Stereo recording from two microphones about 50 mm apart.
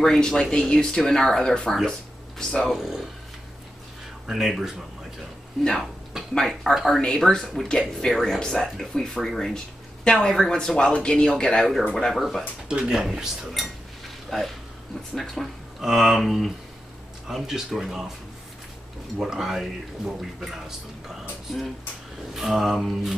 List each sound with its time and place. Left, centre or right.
0.0 s speech: centre
2.7 s speech: centre
4.3 s speech: centre
6.3 s speech: centre
12.1 s speech: centre
12.6 s speech: centre
14.3 s speech: centre
15.8 s speech: centre
19.1 s speech: centre